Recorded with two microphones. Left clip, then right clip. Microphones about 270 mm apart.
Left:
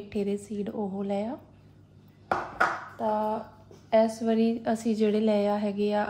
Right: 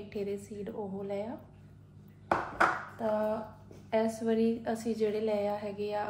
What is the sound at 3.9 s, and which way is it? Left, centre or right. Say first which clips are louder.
A woman's voice: left 6 dB; left.